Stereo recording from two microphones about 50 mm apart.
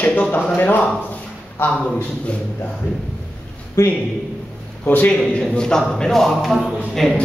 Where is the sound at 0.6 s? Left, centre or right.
Left.